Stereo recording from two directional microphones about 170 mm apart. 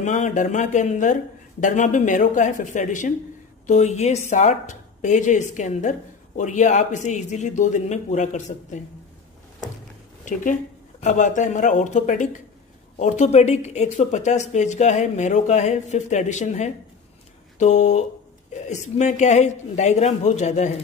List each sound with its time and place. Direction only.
0.0 s speech: 45° left (ahead or behind)
10.2 s speech: 50° left (ahead or behind)